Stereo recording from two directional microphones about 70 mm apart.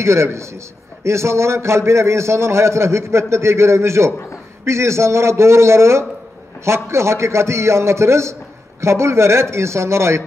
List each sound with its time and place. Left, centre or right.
0.0 s a man's voice: right